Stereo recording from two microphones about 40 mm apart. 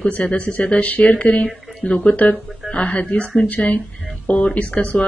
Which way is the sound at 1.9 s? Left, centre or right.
Left.